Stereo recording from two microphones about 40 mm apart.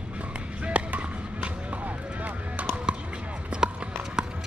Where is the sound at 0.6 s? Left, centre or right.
Right.